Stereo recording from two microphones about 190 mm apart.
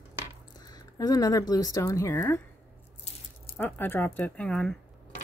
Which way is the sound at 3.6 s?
10° left (ahead or behind).